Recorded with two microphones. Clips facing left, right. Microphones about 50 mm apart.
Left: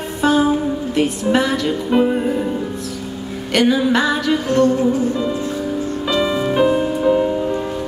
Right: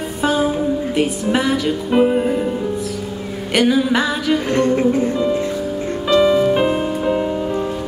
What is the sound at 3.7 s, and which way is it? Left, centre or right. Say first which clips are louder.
Music: left 1 dB; centre.